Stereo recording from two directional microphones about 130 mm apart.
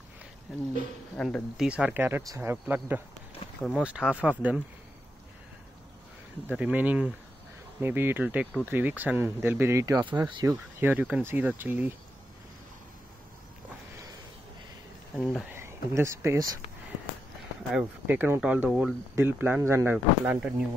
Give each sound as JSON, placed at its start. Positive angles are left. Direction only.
{"t": 1.1, "sound": "speech", "side_deg": 5}
{"t": 1.6, "sound": "speech", "side_deg": -10}
{"t": 6.5, "sound": "speech", "side_deg": -10}
{"t": 15.1, "sound": "speech", "side_deg": 5}
{"t": 15.5, "sound": "speech", "side_deg": -20}
{"t": 17.7, "sound": "speech", "side_deg": -15}
{"t": 19.1, "sound": "speech", "side_deg": -15}